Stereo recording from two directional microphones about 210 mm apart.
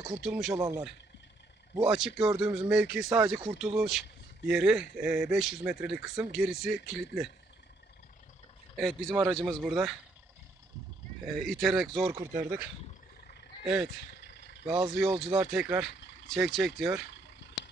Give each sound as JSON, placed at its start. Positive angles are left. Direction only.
{"t": 0.0, "sound": "speech", "side_deg": -5}
{"t": 0.6, "sound": "speech", "side_deg": -15}
{"t": 1.9, "sound": "speech", "side_deg": -5}
{"t": 3.4, "sound": "speech", "side_deg": 0}
{"t": 8.7, "sound": "speech", "side_deg": 0}
{"t": 11.2, "sound": "speech", "side_deg": 0}
{"t": 12.1, "sound": "speech", "side_deg": -15}
{"t": 14.2, "sound": "vehicle", "side_deg": 55}
{"t": 14.9, "sound": "speech", "side_deg": 0}